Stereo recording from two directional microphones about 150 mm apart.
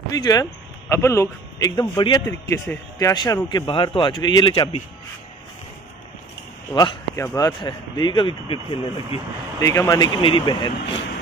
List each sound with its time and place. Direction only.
0.1 s speech: 25° left (ahead or behind)
6.7 s speech: 25° left (ahead or behind)
9.6 s speech: 20° left (ahead or behind)